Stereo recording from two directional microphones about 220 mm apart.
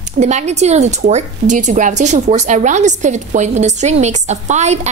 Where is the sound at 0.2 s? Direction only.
30° right (ahead or behind).